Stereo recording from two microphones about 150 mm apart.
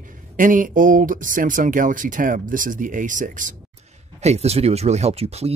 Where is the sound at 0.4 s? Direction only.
65° right (ahead or behind).